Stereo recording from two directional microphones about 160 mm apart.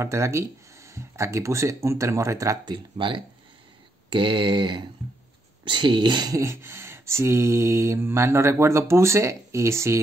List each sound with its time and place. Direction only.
0.0 s speech: 20° right (ahead or behind)